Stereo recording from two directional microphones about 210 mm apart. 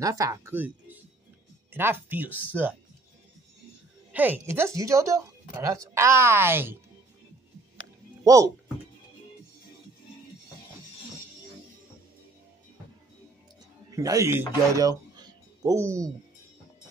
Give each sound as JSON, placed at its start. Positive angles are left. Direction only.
{"t": 0.0, "sound": "a woman's voice", "side_deg": -15}
{"t": 4.1, "sound": "a woman's voice", "side_deg": -10}
{"t": 7.7, "sound": "a sound", "side_deg": -15}
{"t": 13.8, "sound": "speech", "side_deg": -15}